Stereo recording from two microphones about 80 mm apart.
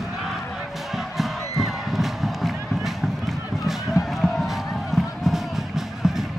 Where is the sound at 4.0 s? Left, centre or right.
Left.